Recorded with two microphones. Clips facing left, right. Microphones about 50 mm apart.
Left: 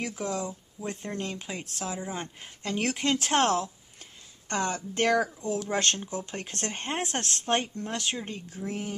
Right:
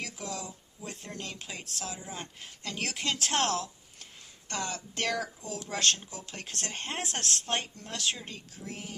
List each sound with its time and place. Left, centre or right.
0.0 s speech: left